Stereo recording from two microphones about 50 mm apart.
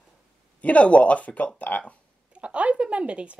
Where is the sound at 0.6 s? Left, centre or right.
Left.